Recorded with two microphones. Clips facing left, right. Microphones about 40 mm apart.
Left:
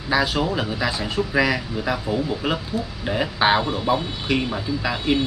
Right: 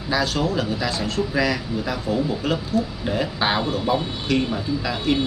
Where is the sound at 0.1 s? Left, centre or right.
Centre.